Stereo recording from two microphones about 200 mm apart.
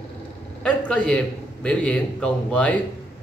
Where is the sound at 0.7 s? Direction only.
5° left (ahead or behind).